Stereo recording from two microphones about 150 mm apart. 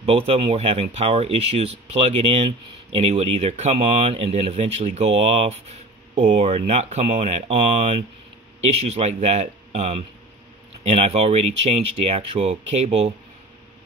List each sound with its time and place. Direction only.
0.0 s speech: 40° right (ahead or behind)